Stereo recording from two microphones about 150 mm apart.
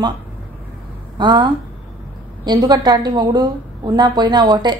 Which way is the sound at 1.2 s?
30° right (ahead or behind).